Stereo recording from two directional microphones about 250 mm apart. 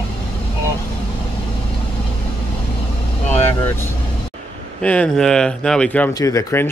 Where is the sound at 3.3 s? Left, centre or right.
Centre.